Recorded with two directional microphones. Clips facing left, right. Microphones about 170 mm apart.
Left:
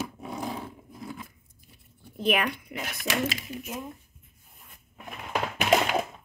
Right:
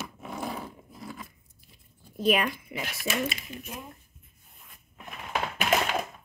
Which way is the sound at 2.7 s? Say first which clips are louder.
Right 1 dB; 5° right (ahead or behind).